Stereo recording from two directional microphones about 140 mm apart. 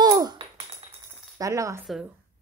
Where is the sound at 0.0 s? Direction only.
25° right (ahead or behind).